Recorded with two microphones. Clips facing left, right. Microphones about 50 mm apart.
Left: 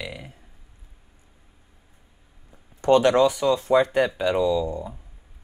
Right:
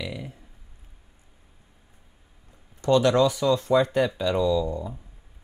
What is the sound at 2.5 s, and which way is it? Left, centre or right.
Speech, left.